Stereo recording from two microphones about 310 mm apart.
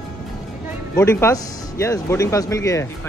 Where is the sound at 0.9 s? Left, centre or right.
Centre.